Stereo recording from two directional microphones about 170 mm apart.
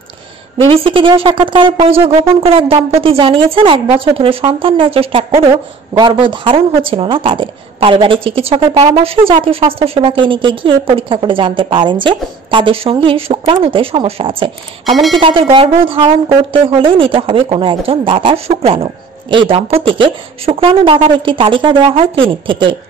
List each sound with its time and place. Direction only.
0.7 s a woman's voice: 30° right (ahead or behind)
5.3 s a woman's voice: 20° right (ahead or behind)